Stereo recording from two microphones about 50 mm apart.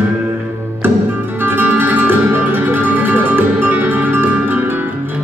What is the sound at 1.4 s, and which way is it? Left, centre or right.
Music, right.